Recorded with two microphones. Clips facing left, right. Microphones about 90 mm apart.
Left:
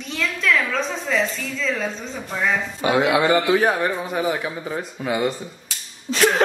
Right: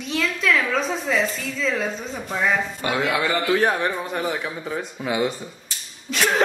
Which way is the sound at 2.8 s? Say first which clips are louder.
Left 9 dB; 20° left (ahead or behind).